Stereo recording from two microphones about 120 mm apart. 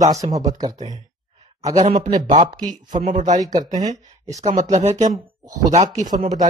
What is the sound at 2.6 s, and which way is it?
Speech, 90° right.